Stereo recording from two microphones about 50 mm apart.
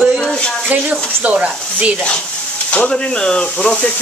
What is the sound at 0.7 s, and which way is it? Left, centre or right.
Speech, right.